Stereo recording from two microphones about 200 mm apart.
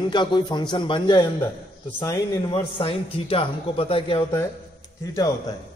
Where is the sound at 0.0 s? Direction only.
20° left (ahead or behind).